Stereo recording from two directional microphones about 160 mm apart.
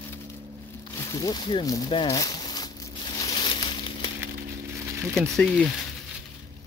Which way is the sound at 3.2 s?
25° left (ahead or behind).